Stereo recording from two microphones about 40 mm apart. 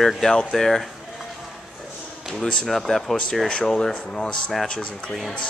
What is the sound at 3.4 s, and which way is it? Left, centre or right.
Speech, left.